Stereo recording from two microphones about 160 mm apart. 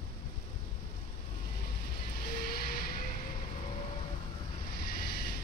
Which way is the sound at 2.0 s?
75° left (ahead or behind).